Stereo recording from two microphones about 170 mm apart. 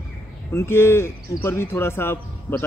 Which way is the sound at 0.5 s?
15° left (ahead or behind).